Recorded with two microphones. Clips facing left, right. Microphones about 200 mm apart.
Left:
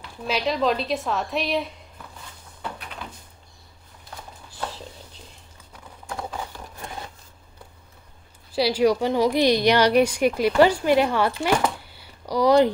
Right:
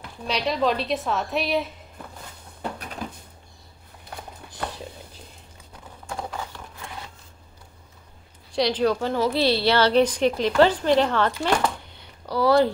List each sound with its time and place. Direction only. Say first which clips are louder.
0.3 s a woman's voice: left 1 dB; centre (ahead or behind)
2.6 s a sound: right 3 dB; 40° right (ahead or behind)
8.5 s a woman's voice: left 2 dB; 5° left (ahead or behind)
11.4 s chopping: left 1 dB; 10° left (ahead or behind)